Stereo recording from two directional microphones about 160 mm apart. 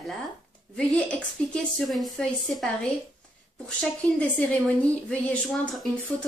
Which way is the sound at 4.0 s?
10° left (ahead or behind).